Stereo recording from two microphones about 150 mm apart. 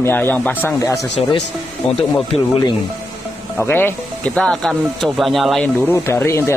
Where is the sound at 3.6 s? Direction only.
15° left (ahead or behind).